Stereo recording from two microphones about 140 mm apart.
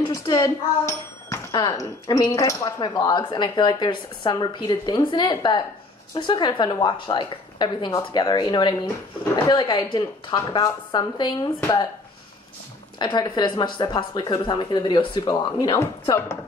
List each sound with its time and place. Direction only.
0.1 s speech: 25° left (ahead or behind)
13.0 s speech: 35° left (ahead or behind); by 16.3 s 20° left (ahead or behind)